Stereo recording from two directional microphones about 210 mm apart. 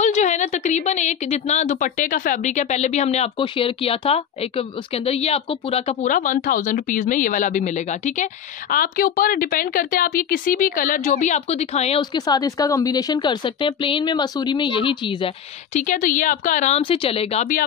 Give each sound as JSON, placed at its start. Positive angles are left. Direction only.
{"t": 0.0, "sound": "a woman's voice", "side_deg": 35}